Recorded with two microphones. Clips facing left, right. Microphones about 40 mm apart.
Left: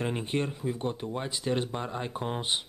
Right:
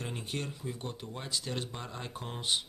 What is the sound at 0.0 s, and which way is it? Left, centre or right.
Speech, left.